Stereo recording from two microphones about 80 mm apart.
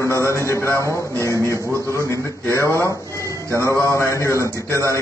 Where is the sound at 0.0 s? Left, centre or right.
Left.